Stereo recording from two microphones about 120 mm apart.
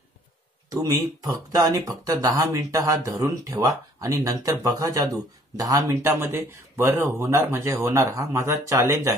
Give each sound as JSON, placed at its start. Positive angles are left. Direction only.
{"t": 0.7, "sound": "speech", "side_deg": -30}